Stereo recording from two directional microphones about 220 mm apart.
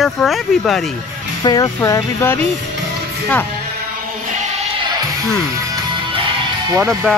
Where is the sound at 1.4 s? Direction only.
20° left (ahead or behind).